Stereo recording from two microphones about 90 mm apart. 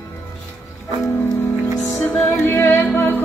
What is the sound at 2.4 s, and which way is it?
Music, 30° left (ahead or behind).